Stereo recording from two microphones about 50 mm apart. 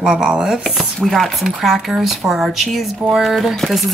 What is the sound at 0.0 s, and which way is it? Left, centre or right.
Speech, centre.